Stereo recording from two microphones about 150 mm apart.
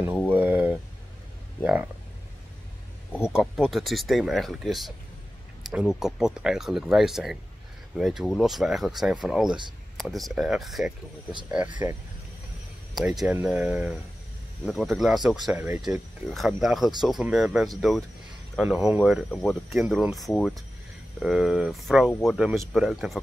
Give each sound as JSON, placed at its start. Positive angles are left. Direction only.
{"t": 0.3, "sound": "a sound", "side_deg": -10}
{"t": 3.2, "sound": "speech", "side_deg": -5}
{"t": 12.9, "sound": "speech", "side_deg": 0}
{"t": 15.5, "sound": "speech", "side_deg": -15}
{"t": 15.8, "sound": "speech", "side_deg": 0}